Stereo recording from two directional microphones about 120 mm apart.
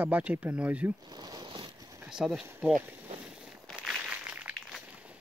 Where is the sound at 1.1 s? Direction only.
35° right (ahead or behind).